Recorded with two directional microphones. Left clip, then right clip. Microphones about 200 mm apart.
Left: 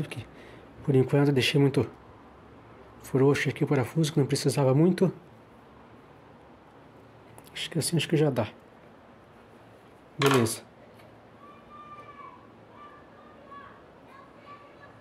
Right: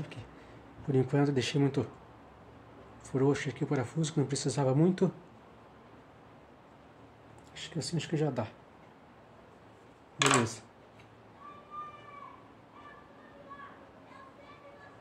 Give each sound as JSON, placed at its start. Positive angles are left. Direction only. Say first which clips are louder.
{"t": 0.0, "sound": "speech", "louder": "left 7 dB", "side_deg": 40}
{"t": 3.1, "sound": "speech", "louder": "left 6 dB", "side_deg": 35}
{"t": 7.5, "sound": "speech", "louder": "left 8 dB", "side_deg": 40}